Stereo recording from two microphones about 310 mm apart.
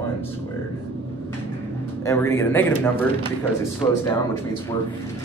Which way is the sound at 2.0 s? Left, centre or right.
Centre.